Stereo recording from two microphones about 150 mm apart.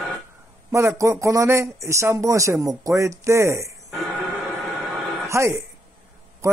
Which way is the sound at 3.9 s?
Centre (ahead or behind).